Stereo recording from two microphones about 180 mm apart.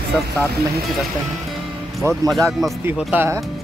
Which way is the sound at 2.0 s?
15° right (ahead or behind).